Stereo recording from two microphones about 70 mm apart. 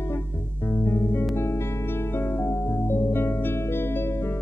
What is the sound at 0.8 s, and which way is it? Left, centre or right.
Music, left.